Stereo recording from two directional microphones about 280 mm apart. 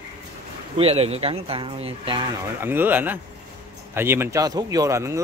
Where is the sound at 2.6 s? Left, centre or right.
Centre.